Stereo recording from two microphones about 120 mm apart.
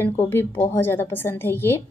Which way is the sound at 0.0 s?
20° left (ahead or behind).